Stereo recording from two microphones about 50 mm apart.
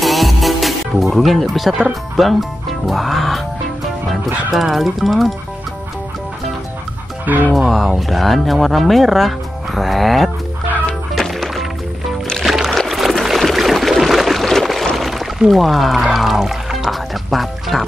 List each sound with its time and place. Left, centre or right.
0.0 s music: centre
1.9 s speech: centre
4.5 s speech: centre
7.2 s speech: right
7.5 s speech: centre
11.1 s music: centre
13.2 s a sound: centre
15.0 s music: centre